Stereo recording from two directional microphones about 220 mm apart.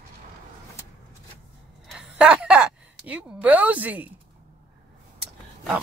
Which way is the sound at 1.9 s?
5° right (ahead or behind).